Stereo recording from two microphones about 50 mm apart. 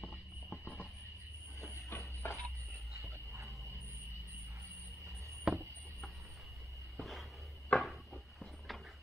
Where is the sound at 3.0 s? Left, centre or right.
Right.